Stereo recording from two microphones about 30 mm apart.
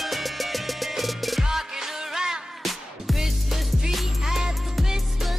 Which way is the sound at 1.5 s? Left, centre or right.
Centre.